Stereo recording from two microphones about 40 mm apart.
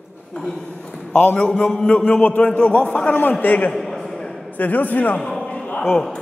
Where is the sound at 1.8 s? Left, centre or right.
Left.